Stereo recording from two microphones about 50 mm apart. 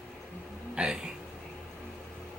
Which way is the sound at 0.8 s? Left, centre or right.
Centre.